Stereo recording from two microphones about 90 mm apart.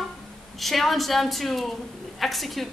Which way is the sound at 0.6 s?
Centre (ahead or behind).